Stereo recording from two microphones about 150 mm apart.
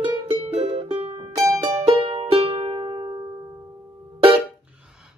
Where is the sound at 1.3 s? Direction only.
20° right (ahead or behind).